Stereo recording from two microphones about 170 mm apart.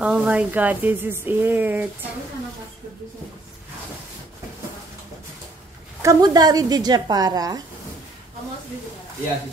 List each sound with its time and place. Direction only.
0.0 s speech: 5° right (ahead or behind)
6.0 s a woman's voice: 20° right (ahead or behind)